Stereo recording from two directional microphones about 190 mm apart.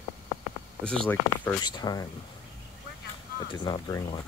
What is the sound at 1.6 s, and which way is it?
Speech, 20° left (ahead or behind).